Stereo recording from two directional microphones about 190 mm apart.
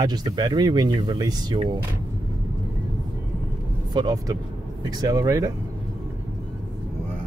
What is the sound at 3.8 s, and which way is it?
Speech, 20° right (ahead or behind).